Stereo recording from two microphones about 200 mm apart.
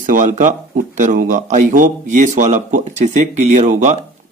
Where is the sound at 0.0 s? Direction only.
40° right (ahead or behind).